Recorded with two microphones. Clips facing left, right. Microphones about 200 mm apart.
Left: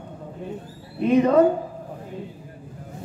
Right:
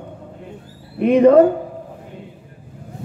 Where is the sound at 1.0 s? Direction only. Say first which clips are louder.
Right 6 dB; 65° right (ahead or behind).